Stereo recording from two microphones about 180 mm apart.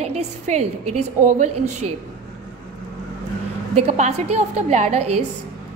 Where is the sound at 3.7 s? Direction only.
40° right (ahead or behind).